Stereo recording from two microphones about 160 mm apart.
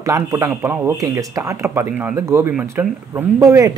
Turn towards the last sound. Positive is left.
turn(degrees=-20)  # may be behind; listen again after turning